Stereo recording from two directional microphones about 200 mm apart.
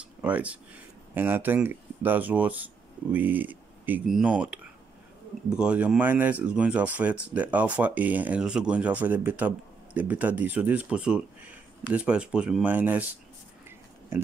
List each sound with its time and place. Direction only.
0.0 s speech: 5° right (ahead or behind)